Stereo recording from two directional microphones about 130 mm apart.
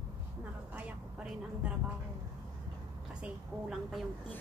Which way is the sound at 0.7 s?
10° right (ahead or behind).